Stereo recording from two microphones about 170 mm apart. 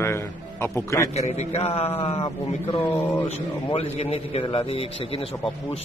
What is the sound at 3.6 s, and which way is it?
A man's voice, 35° left (ahead or behind).